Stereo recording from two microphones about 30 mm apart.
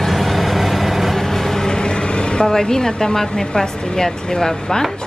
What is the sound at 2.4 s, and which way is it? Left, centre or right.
Speech, centre.